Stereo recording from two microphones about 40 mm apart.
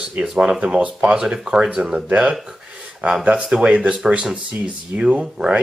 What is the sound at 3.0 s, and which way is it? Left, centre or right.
Speech, right.